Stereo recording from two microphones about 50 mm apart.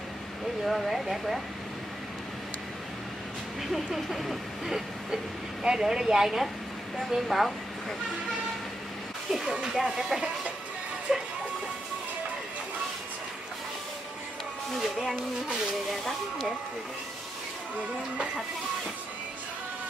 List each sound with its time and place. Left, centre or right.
0.7 s speech: centre
3.7 s train: centre
7.0 s speech: centre
9.3 s train: centre
11.1 s speech: centre
14.8 s speech: centre